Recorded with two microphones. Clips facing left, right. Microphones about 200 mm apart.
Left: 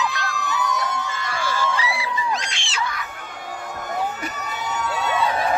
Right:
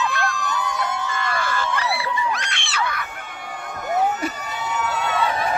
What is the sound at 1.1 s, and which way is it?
Screaming, 55° right (ahead or behind).